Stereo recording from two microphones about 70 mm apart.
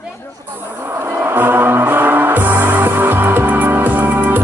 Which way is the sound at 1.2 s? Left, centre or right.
Right.